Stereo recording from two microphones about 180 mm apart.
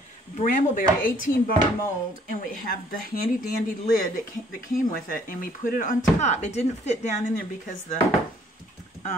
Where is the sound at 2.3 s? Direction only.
55° left (ahead or behind).